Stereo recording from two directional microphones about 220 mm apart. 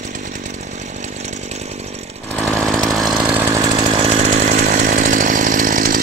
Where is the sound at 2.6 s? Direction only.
Centre (ahead or behind).